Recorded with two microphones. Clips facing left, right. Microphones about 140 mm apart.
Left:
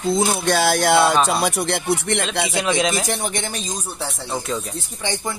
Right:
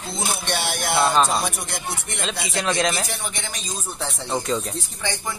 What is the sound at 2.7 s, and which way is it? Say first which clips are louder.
Speech: left 2 dB; 5° left (ahead or behind).